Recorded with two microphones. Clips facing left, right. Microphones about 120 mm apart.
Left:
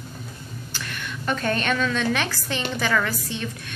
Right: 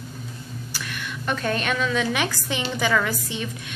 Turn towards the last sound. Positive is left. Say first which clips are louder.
# even
turn(degrees=-15)  # may be behind; listen again after turning